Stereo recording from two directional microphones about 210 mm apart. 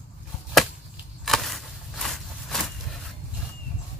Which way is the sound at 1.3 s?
Centre (ahead or behind).